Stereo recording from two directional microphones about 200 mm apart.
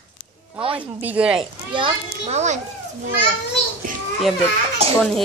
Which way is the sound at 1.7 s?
30° right (ahead or behind).